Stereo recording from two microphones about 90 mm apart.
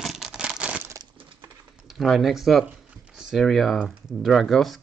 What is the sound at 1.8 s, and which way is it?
Speech, centre (ahead or behind).